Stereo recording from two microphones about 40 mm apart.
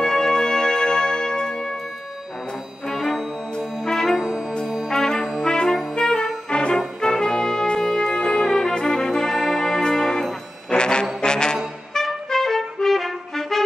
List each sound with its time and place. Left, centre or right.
0.0 s music: centre
2.9 s music: centre
3.5 s brass instrument: centre
5.4 s music: centre
10.7 s brass instrument: left
11.9 s music: centre